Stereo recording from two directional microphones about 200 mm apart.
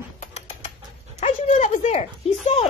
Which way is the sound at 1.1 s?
35° left (ahead or behind).